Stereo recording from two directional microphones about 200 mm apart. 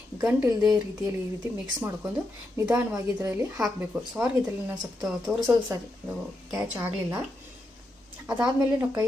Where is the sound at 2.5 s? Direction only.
15° right (ahead or behind).